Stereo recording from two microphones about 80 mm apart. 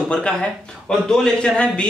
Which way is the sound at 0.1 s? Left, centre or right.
Centre.